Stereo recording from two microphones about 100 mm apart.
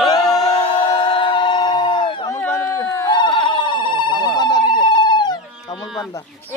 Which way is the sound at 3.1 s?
50° left (ahead or behind).